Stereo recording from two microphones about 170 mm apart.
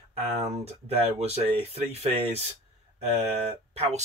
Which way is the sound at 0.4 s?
35° right (ahead or behind).